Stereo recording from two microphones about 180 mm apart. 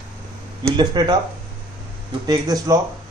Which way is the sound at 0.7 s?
25° right (ahead or behind).